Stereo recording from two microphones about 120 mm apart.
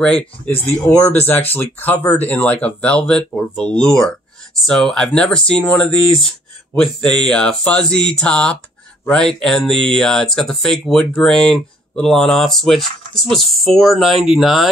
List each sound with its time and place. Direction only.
0.0 s speech: 10° left (ahead or behind)